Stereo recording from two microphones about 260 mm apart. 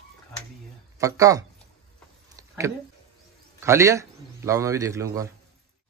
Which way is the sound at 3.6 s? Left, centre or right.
Centre.